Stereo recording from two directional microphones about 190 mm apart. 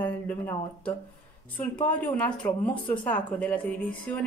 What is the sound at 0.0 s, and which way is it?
A woman's voice, 10° left (ahead or behind).